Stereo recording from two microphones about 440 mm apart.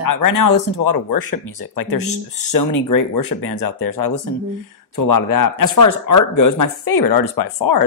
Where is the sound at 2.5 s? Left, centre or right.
Left.